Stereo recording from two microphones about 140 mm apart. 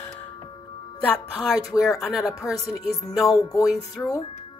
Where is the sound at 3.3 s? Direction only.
25° left (ahead or behind).